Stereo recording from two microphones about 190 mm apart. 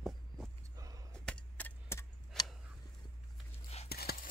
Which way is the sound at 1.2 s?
5° left (ahead or behind).